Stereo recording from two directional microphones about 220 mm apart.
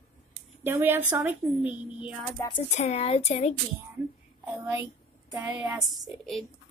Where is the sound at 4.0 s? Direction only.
10° right (ahead or behind).